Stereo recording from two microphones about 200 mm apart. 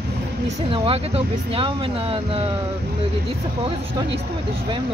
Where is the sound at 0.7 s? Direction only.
30° right (ahead or behind).